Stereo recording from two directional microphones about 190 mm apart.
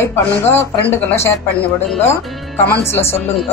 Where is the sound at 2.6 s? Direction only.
10° left (ahead or behind).